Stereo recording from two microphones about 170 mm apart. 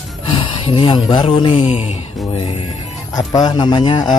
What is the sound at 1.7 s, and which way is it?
Music, 45° left (ahead or behind).